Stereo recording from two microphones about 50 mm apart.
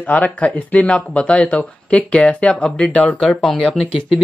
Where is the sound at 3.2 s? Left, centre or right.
Centre.